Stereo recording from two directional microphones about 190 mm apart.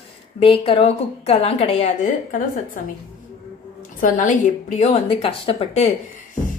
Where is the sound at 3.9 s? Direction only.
40° left (ahead or behind).